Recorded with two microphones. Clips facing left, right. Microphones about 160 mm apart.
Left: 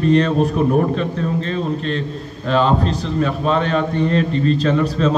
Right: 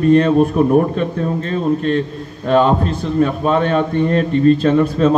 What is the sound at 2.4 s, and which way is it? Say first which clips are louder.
A man's voice: right 3 dB; 50° right (ahead or behind).